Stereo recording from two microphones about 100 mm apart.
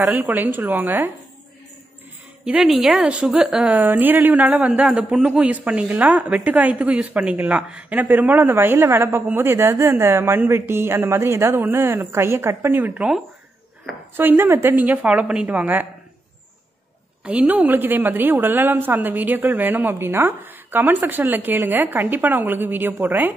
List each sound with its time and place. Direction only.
0.0 s a man's voice: 20° right (ahead or behind)
2.4 s a woman's voice: 5° right (ahead or behind)
3.7 s a man's voice: 20° right (ahead or behind)
14.1 s a woman's voice: 20° right (ahead or behind)
17.2 s a man's voice: 10° right (ahead or behind)